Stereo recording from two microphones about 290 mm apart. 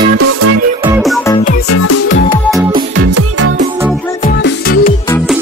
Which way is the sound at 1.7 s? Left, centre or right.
Left.